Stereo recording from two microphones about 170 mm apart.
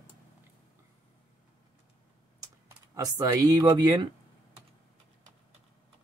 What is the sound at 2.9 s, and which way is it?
Speech, 20° right (ahead or behind).